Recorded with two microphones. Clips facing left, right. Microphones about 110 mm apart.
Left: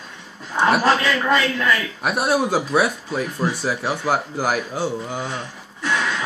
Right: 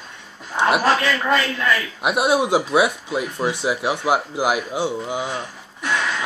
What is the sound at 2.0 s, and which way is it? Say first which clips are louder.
Speech: right 2 dB; 15° right (ahead or behind).